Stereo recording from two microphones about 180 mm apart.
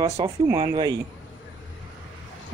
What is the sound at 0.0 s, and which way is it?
Speech, 20° right (ahead or behind).